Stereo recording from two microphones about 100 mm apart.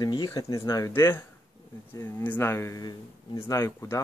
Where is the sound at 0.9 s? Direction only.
25° left (ahead or behind).